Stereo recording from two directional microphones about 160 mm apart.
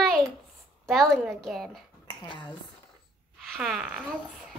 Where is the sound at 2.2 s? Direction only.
30° left (ahead or behind).